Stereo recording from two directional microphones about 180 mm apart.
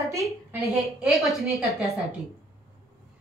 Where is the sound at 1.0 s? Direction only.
5° right (ahead or behind).